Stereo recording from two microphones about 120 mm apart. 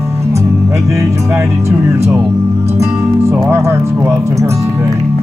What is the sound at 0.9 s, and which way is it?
Speech, 25° right (ahead or behind).